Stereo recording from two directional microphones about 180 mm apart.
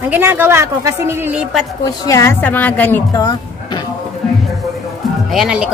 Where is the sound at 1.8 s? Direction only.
20° left (ahead or behind).